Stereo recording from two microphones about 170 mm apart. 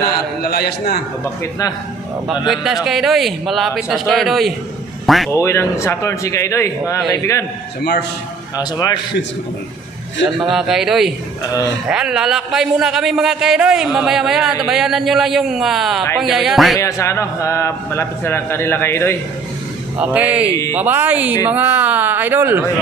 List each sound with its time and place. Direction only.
0.4 s a man's voice: 65° left (ahead or behind)
1.2 s a man's voice: 15° left (ahead or behind)
2.2 s a man's voice: centre (ahead or behind)
5.3 s a man's voice: 15° left (ahead or behind)
8.5 s a man's voice: 20° left (ahead or behind)
10.5 s a man's voice: centre (ahead or behind)
16.7 s a man's voice: 15° left (ahead or behind)
20.0 s speech: 10° right (ahead or behind)